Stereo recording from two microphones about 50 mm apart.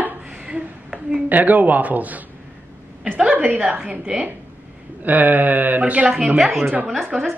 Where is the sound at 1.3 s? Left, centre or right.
Right.